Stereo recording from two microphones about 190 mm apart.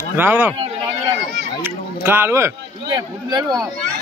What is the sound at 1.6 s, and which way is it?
Speech, 10° right (ahead or behind).